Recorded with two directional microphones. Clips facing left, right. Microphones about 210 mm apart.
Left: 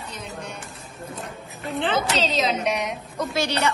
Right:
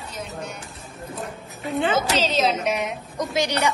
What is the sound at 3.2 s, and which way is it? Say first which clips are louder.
Speech: right 1 dB; 15° right (ahead or behind).